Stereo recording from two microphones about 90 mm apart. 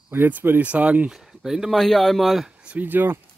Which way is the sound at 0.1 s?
20° right (ahead or behind).